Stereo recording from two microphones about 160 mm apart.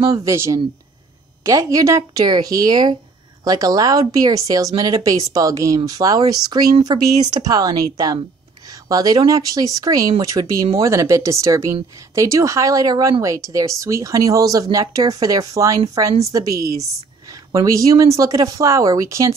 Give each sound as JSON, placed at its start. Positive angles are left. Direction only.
{"t": 0.2, "sound": "speech", "side_deg": -20}